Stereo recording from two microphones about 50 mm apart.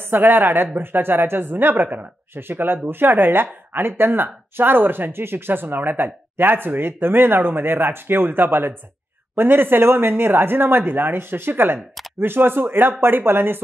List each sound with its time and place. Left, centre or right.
0.0 s speech: right